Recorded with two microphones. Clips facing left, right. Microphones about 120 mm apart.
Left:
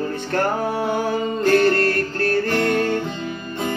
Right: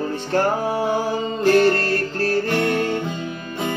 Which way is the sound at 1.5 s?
25° right (ahead or behind).